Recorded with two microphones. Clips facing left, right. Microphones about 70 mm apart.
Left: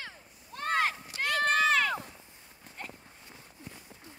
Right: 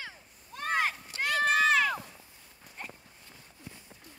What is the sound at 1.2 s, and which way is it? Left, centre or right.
Run, centre.